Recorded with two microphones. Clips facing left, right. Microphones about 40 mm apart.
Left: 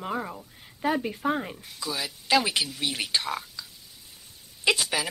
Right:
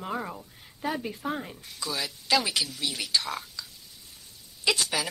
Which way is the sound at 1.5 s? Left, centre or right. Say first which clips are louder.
Left 1 dB; centre.